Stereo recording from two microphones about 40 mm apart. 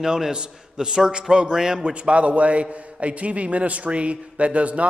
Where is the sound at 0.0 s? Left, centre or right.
Centre.